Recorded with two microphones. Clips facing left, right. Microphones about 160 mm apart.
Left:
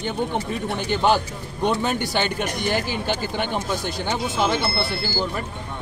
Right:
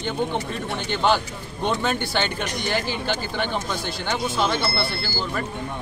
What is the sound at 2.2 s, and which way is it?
Speech, 45° left (ahead or behind).